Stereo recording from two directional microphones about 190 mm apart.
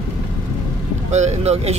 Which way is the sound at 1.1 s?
35° right (ahead or behind).